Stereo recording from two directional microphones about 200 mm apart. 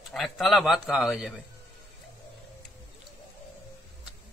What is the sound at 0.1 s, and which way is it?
A man's voice, centre (ahead or behind).